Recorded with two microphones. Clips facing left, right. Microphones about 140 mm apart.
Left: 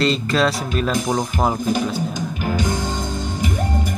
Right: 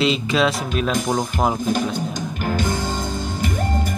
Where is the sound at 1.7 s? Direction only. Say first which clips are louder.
Left 1 dB; 10° left (ahead or behind).